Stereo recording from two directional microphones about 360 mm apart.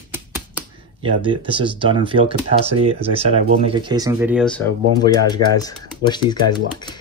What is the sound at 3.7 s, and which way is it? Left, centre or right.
Speech, centre.